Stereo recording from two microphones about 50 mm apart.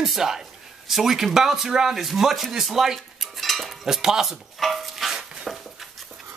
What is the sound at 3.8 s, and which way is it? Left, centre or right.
Speech, centre.